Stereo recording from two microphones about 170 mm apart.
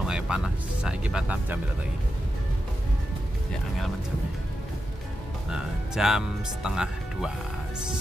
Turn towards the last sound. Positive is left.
turn(degrees=-5)  # may be behind; listen again after turning